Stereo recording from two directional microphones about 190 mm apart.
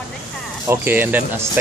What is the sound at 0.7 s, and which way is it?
Speech, 10° right (ahead or behind).